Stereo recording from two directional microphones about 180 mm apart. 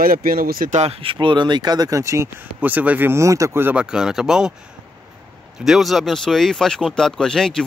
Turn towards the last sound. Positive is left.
turn(degrees=5)  # may be behind; listen again after turning